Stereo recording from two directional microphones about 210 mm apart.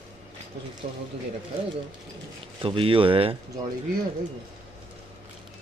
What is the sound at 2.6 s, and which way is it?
Speech, 25° right (ahead or behind).